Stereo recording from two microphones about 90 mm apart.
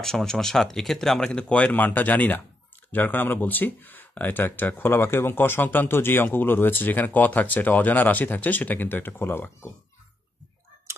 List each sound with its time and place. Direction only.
0.0 s speech: 5° left (ahead or behind); by 9.7 s 25° left (ahead or behind)